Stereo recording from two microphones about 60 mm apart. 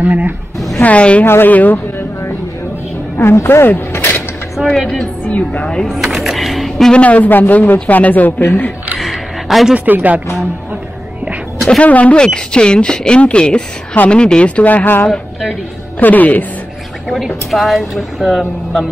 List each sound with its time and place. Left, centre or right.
0.0 s a sound: right
0.7 s a woman's voice: left
1.2 s speech: left
1.5 s a sound: left
3.2 s speech: left
4.6 s a woman's voice: centre
5.3 s speech: left
5.9 s a sound: centre
6.9 s speech: left
8.9 s a sound: centre
9.8 s speech: right
11.8 s speech: left
17.1 s a woman's voice: centre